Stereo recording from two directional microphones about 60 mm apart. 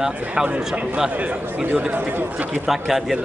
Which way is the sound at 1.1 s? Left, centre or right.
Right.